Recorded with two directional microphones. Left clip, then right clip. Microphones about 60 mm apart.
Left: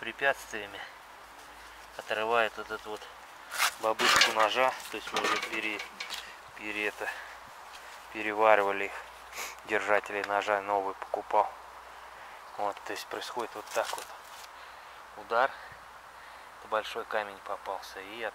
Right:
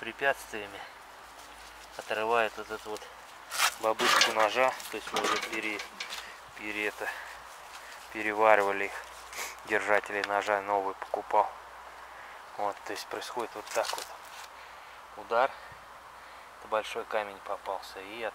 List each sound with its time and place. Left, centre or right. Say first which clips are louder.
0.0 s speech: even; centre
2.0 s speech: even; centre
12.5 s speech: even; centre
15.2 s speech: even; centre
16.7 s speech: even; centre